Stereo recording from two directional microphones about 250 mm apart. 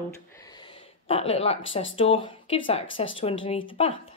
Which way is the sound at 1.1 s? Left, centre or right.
Left.